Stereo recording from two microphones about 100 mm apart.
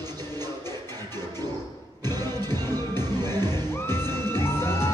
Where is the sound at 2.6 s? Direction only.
40° right (ahead or behind).